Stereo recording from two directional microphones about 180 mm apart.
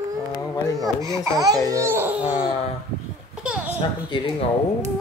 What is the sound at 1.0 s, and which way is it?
A child's voice, 20° right (ahead or behind).